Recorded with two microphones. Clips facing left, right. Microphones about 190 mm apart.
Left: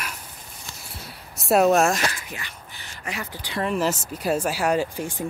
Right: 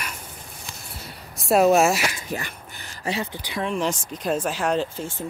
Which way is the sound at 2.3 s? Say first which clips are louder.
Right 7 dB; 45° right (ahead or behind).